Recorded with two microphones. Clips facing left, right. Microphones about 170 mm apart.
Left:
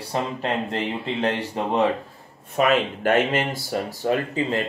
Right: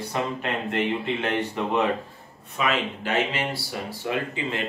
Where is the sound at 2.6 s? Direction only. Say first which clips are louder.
Left 6 dB; 50° left (ahead or behind).